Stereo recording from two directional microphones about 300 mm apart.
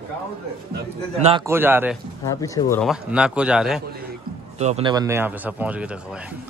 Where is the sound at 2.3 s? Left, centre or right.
Centre.